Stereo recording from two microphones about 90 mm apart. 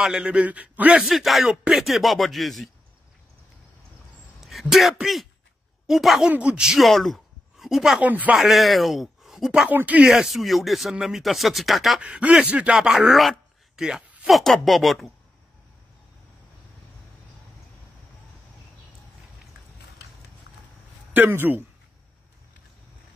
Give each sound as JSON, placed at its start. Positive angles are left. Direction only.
{"t": 0.0, "sound": "speech", "side_deg": -10}
{"t": 1.0, "sound": "speech", "side_deg": 0}
{"t": 4.4, "sound": "speech", "side_deg": 0}
{"t": 6.3, "sound": "speech", "side_deg": -15}
{"t": 8.0, "sound": "speech", "side_deg": -20}
{"t": 8.4, "sound": "speech", "side_deg": 0}
{"t": 9.5, "sound": "speech", "side_deg": -10}
{"t": 10.0, "sound": "speech", "side_deg": -5}
{"t": 12.0, "sound": "speech", "side_deg": -15}
{"t": 21.1, "sound": "speech", "side_deg": -20}